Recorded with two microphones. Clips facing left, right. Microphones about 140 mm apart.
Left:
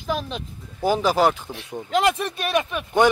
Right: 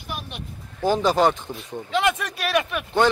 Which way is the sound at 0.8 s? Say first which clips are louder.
Even; 10° left (ahead or behind).